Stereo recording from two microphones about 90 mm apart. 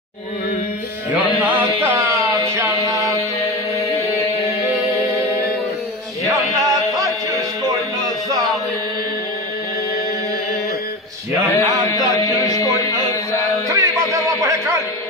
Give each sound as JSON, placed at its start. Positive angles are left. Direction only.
{"t": 2.2, "sound": "music", "side_deg": -35}
{"t": 3.1, "sound": "music", "side_deg": 35}
{"t": 6.2, "sound": "music", "side_deg": -35}
{"t": 11.5, "sound": "a sound", "side_deg": 35}
{"t": 13.7, "sound": "music", "side_deg": -35}